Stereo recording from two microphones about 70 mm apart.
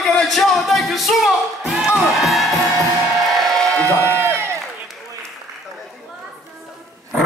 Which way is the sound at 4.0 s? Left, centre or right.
Right.